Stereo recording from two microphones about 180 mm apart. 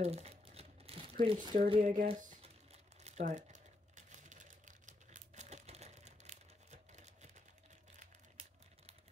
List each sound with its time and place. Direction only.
0.0 s crumpling: 35° right (ahead or behind)